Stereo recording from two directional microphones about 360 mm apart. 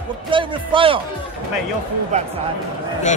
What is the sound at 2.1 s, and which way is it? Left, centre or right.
Speech, centre.